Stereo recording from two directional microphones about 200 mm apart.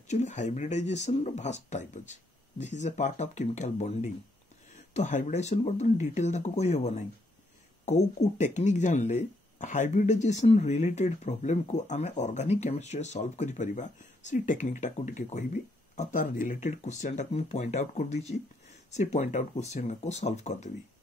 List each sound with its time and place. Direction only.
0.1 s speech: 35° left (ahead or behind)